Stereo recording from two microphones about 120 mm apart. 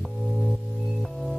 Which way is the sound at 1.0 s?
Centre (ahead or behind).